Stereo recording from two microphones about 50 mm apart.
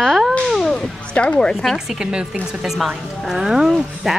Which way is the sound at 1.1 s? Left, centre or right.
Left.